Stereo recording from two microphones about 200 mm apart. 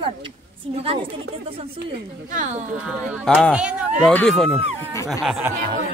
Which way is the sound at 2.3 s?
35° right (ahead or behind).